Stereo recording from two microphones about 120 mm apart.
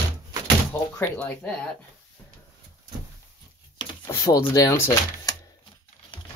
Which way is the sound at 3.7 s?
30° left (ahead or behind).